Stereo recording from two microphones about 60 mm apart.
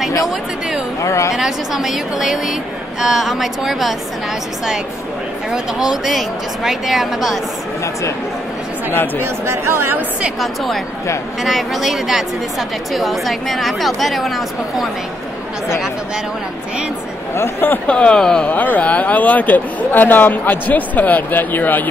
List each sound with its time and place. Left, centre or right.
1.0 s a woman's voice: left
1.3 s a woman's voice: centre
5.5 s a woman's voice: centre
9.2 s speech: right
10.4 s a woman's voice: centre
17.4 s speech: left
17.8 s speech: centre
18.5 s speech: left